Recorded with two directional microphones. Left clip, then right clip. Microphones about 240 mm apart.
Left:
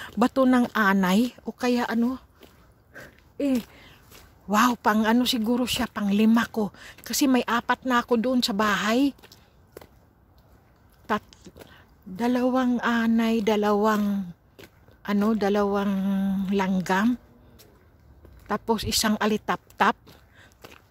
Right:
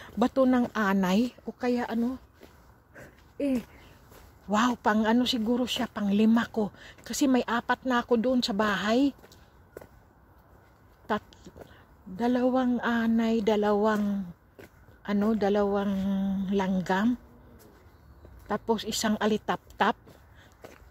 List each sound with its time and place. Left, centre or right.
0.0 s speech: centre
2.9 s a sound: centre
4.5 s speech: centre
11.1 s speech: centre
18.5 s speech: centre